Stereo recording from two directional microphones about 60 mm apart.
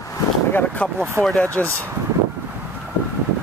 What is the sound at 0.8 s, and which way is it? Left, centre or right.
Speech, left.